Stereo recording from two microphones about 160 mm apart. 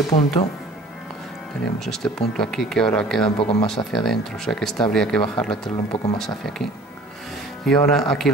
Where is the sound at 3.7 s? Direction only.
Centre (ahead or behind).